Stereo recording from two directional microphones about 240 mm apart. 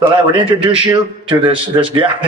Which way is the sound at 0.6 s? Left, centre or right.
Centre.